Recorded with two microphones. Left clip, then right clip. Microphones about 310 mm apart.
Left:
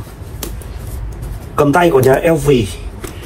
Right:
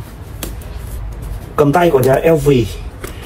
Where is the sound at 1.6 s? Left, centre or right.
Left.